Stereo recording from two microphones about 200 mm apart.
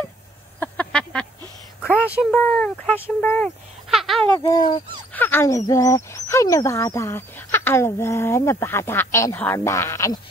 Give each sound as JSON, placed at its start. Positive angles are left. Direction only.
{"t": 0.6, "sound": "a sound", "side_deg": 5}
{"t": 1.8, "sound": "speech", "side_deg": 10}
{"t": 2.0, "sound": "speech", "side_deg": -5}
{"t": 4.5, "sound": "speech", "side_deg": 20}